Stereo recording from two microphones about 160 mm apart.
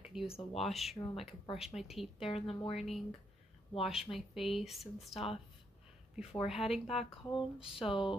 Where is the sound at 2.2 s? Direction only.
35° left (ahead or behind).